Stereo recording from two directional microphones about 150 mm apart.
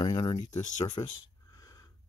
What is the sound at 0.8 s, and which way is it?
Speech, 25° left (ahead or behind).